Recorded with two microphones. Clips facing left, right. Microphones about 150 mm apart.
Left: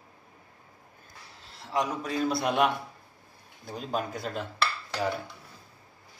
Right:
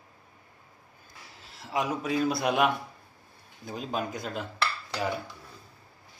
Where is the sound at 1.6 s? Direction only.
5° right (ahead or behind).